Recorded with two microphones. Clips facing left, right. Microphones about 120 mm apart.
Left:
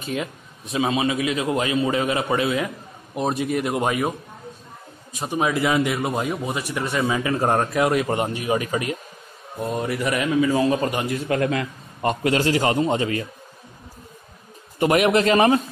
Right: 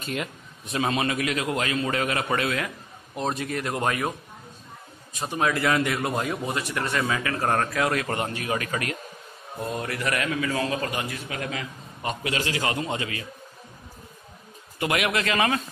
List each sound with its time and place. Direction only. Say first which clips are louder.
0.7 s a man's voice: left 4 dB; 15° left (ahead or behind)
5.2 s a man's voice: left 3 dB; 10° left (ahead or behind)
9.8 s a man's voice: left 5 dB; 15° left (ahead or behind)
10.7 s speech: left 7 dB; 30° left (ahead or behind)
11.2 s a man's voice: left 10 dB; 50° left (ahead or behind); by 13.3 s 35° left (ahead or behind)
14.8 s speech: left 8 dB; 30° left (ahead or behind)